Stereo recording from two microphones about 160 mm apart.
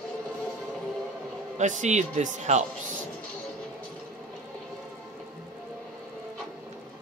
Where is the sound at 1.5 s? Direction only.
50° right (ahead or behind).